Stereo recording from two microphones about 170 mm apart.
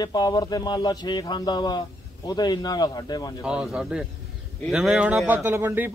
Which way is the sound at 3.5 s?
5° right (ahead or behind).